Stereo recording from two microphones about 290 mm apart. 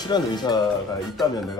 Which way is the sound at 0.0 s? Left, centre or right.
Centre.